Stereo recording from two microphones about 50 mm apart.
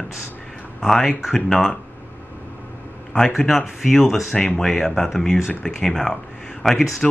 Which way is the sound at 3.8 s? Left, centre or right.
Centre.